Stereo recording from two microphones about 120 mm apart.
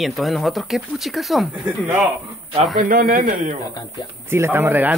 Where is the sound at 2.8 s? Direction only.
90° right.